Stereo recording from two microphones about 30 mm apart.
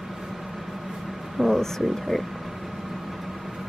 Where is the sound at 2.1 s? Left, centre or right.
Centre.